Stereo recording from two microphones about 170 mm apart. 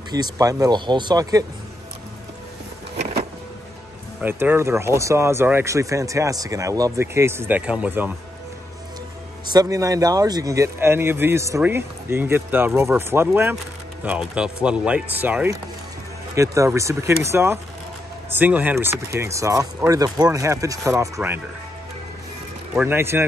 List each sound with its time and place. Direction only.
0.1 s speech: 20° right (ahead or behind)
4.2 s speech: 10° right (ahead or behind)
9.5 s speech: 20° right (ahead or behind)
22.8 s speech: 15° right (ahead or behind)